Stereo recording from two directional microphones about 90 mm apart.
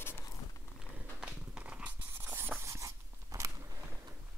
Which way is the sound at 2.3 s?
25° right (ahead or behind).